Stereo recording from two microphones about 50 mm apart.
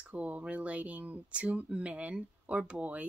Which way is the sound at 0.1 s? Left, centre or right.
Right.